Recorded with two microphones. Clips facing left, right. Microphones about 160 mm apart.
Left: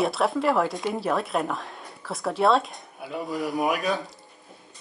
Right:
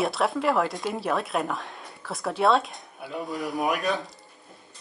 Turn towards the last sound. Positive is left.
turn(degrees=0)  # may be behind; listen again after turning